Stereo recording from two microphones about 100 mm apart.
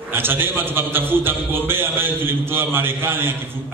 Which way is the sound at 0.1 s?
20° right (ahead or behind).